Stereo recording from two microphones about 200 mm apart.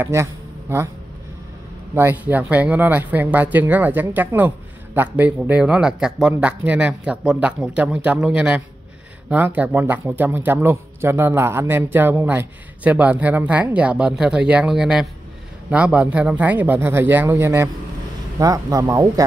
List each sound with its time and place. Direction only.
0.0 s speech: 15° right (ahead or behind)
2.0 s speech: 10° right (ahead or behind)